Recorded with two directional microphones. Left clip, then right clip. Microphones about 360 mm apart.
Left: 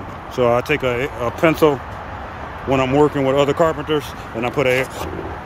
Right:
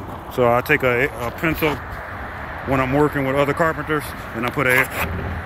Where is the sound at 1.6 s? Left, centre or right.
Centre.